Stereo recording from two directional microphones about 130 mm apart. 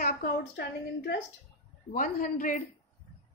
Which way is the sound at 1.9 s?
90° left.